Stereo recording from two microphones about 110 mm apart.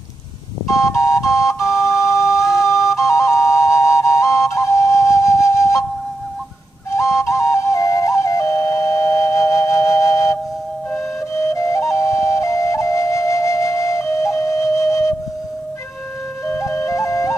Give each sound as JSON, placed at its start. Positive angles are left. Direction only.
{"t": 0.7, "sound": "music", "side_deg": 30}
{"t": 1.7, "sound": "flute", "side_deg": 25}
{"t": 7.0, "sound": "music", "side_deg": 25}
{"t": 11.3, "sound": "flute", "side_deg": 25}
{"t": 16.4, "sound": "flute", "side_deg": 25}